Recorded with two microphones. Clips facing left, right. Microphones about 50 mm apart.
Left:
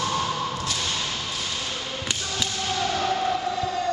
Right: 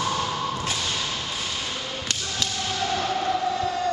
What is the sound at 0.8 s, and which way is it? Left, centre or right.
Whip, centre.